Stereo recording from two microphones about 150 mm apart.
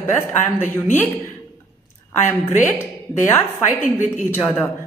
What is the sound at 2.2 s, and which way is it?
A woman's voice, 15° left (ahead or behind).